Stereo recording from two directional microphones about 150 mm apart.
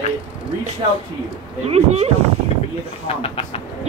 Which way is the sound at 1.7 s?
45° right (ahead or behind).